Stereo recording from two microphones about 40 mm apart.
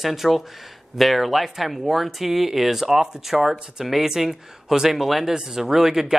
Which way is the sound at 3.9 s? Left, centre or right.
Centre.